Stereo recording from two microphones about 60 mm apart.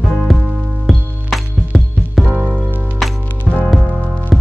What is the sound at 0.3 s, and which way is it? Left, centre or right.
Music, centre.